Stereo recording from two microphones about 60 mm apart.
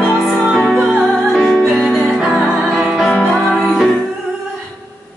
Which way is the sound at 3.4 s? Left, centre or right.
Centre.